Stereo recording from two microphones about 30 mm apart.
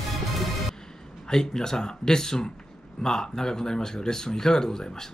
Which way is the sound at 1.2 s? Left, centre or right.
Centre.